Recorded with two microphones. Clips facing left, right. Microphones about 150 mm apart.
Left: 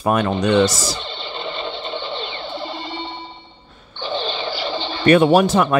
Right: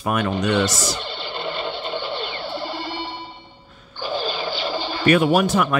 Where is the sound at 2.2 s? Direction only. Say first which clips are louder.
Even; 20° left (ahead or behind).